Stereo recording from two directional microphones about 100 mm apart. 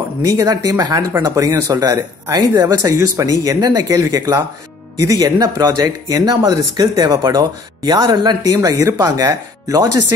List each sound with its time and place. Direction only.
0.2 s speech: 35° right (ahead or behind)
8.5 s speech: 30° right (ahead or behind)